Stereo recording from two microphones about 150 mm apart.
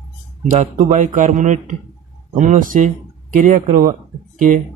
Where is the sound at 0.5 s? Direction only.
55° right (ahead or behind).